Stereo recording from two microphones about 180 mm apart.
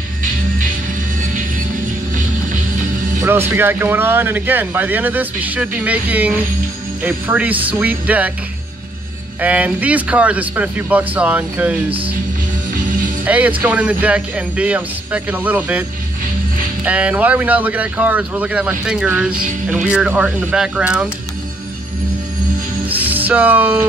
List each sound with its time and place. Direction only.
3.2 s speech: 15° right (ahead or behind)
9.4 s speech: 10° right (ahead or behind)
13.2 s speech: 10° right (ahead or behind)
16.8 s speech: 5° right (ahead or behind)
22.8 s music: 10° right (ahead or behind)